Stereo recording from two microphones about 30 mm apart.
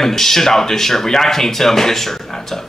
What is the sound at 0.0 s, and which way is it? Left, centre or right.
Speech, centre.